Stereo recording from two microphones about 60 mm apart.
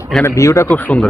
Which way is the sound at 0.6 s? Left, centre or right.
Left.